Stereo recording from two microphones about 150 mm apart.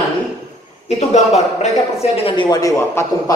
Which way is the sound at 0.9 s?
45° left (ahead or behind).